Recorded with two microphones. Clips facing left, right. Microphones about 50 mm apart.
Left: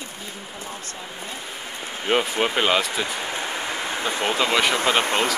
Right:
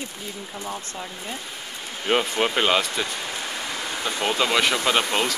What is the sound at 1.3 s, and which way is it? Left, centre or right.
Rain, centre.